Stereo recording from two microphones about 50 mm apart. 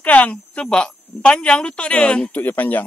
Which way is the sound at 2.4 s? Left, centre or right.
Left.